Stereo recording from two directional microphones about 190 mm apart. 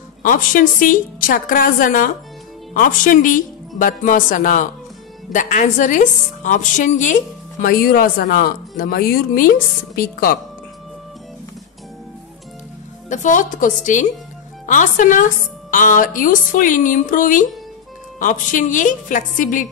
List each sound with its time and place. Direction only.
0.2 s a woman's voice: 45° left (ahead or behind)
7.6 s a woman's voice: 50° left (ahead or behind)
13.1 s a woman's voice: 40° left (ahead or behind)